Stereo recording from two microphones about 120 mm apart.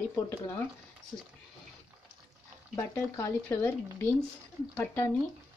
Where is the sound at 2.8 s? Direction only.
20° left (ahead or behind).